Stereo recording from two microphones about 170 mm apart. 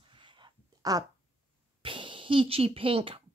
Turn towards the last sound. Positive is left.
turn(degrees=-30)  # may be behind; listen again after turning